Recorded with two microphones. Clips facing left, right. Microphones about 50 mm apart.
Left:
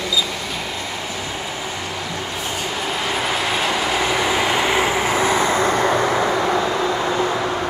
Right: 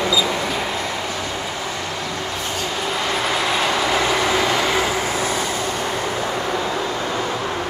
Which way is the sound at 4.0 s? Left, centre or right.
Centre.